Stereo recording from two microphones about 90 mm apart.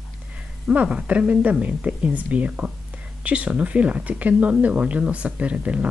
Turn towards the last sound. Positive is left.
turn(degrees=-15)  # may be behind; listen again after turning